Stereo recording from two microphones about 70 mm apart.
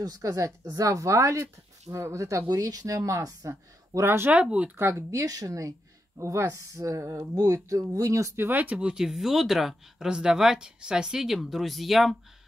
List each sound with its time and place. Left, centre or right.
0.0 s speech: right
2.4 s speech: right
4.0 s speech: right
4.3 s speech: centre
4.7 s speech: right
5.1 s speech: right
8.4 s speech: right; by 12.2 s centre